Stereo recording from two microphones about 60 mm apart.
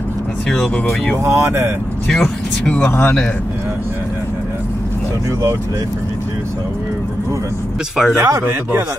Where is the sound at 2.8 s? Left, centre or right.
Left.